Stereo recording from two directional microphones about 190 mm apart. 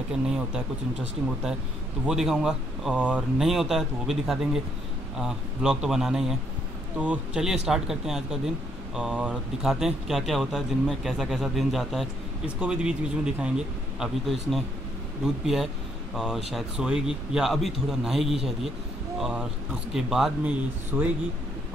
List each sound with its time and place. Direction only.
0.1 s speech: 5° right (ahead or behind)
2.0 s speech: 5° right (ahead or behind)
20.9 s speech: 15° right (ahead or behind)